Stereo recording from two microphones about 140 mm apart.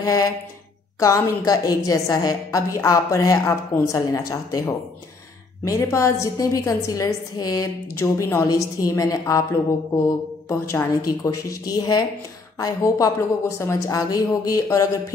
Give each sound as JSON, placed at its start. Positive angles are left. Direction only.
{"t": 0.0, "sound": "a sound", "side_deg": 25}
{"t": 0.9, "sound": "a woman's voice", "side_deg": 25}
{"t": 11.1, "sound": "a woman's voice", "side_deg": 25}